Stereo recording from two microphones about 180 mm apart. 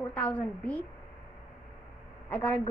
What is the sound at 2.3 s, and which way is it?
Speech, 10° left (ahead or behind).